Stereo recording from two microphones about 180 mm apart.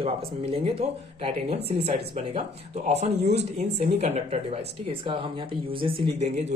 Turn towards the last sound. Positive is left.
turn(degrees=-40)  # may be behind; listen again after turning